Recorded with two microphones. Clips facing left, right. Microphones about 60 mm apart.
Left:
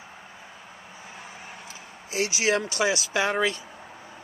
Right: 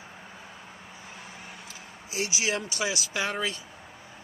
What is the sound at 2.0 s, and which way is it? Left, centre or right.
Speech, left.